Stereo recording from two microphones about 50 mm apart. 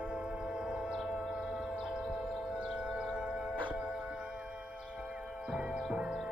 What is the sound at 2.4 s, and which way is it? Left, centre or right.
Music, centre.